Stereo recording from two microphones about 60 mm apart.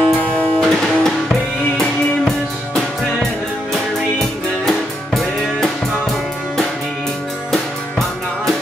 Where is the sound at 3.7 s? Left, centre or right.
Centre.